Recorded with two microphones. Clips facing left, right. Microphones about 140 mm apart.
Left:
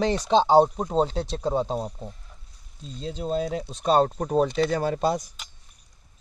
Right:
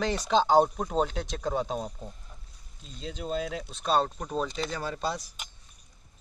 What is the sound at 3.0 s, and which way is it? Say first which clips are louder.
Speech: left 5 dB; 30° left (ahead or behind).